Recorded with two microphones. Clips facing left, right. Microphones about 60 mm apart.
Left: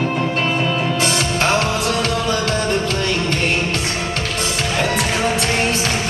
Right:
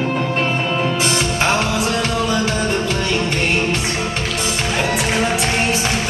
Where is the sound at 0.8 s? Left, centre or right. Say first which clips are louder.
Right 1 dB; centre.